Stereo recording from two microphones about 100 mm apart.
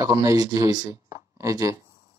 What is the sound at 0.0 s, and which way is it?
Speech, 35° right (ahead or behind).